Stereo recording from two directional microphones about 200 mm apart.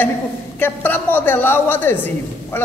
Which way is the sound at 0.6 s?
10° left (ahead or behind).